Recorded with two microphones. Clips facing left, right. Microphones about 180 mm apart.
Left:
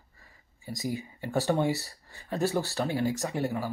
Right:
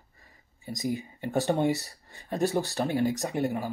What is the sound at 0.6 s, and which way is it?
Speech, 20° right (ahead or behind).